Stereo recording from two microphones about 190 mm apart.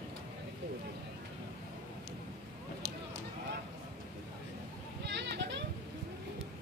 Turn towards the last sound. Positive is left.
turn(degrees=-65)  # may be behind; listen again after turning